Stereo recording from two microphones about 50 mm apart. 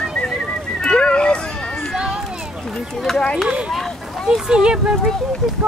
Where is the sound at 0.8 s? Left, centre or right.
Centre.